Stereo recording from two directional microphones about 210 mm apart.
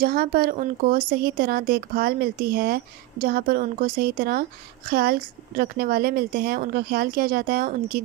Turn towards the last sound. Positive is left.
turn(degrees=-45)  # may be behind; listen again after turning